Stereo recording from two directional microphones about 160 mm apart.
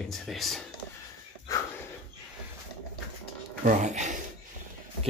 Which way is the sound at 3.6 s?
50° right (ahead or behind).